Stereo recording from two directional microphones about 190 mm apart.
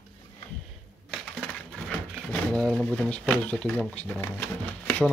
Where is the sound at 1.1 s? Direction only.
5° left (ahead or behind).